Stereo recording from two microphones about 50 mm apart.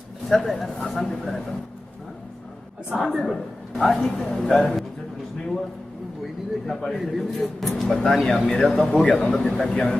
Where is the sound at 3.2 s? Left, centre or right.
Centre.